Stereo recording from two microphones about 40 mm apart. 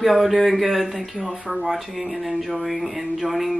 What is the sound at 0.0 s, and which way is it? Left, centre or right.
Speech, centre.